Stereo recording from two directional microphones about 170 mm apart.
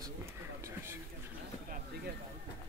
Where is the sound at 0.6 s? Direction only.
15° right (ahead or behind).